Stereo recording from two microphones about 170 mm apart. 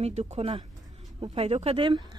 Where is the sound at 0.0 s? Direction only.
40° right (ahead or behind).